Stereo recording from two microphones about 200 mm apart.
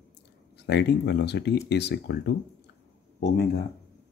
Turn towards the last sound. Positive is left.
turn(degrees=50)  # may be behind; listen again after turning